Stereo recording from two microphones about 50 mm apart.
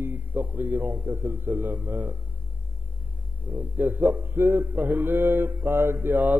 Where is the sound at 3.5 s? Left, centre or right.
Right.